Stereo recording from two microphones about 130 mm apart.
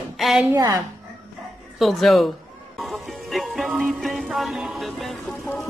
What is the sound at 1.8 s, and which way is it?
Speech, centre (ahead or behind).